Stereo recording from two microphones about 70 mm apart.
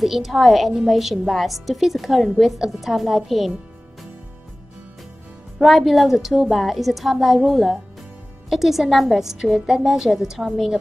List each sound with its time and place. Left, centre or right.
0.0 s a woman's voice: centre
5.6 s a woman's voice: centre